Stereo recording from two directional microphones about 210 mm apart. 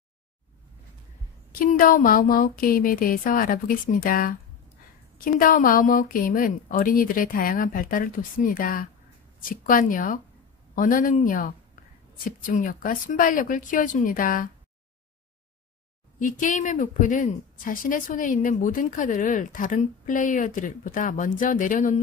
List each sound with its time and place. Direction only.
1.5 s a woman's voice: 40° left (ahead or behind)
16.2 s a woman's voice: 40° left (ahead or behind)